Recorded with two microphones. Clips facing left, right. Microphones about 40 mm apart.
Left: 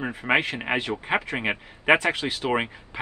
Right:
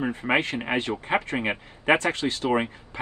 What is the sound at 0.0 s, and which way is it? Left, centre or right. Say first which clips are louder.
Speech: left 1 dB; left.